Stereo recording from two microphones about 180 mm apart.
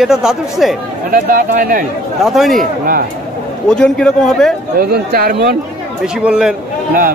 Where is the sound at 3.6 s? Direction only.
5° left (ahead or behind).